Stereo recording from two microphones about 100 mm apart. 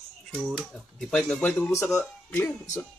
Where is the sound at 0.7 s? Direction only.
5° left (ahead or behind).